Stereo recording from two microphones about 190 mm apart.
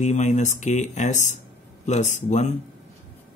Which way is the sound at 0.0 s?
40° left (ahead or behind).